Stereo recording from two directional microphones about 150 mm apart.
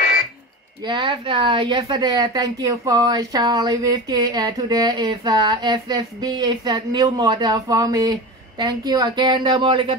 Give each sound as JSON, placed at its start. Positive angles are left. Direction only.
{"t": 0.8, "sound": "speech", "side_deg": -30}